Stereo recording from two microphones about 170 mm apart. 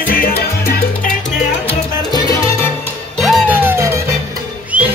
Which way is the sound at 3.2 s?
Centre (ahead or behind).